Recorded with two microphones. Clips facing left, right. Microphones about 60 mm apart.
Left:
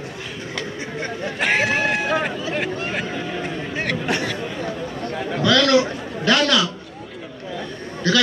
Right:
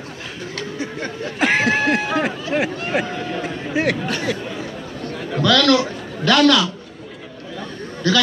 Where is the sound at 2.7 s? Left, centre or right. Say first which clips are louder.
Right 3 dB; centre.